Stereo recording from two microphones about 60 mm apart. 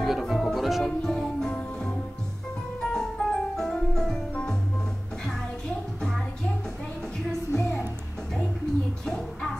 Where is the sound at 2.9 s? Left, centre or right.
Centre.